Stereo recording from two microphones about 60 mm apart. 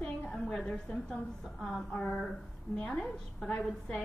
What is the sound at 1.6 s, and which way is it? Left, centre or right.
A woman's voice, centre.